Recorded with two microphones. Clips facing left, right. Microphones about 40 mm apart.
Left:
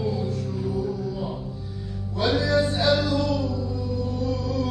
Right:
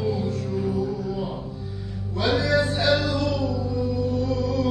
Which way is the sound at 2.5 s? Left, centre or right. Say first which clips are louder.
Even; right.